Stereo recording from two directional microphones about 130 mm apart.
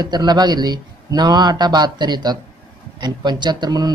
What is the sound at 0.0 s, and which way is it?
A woman's voice, 35° right (ahead or behind).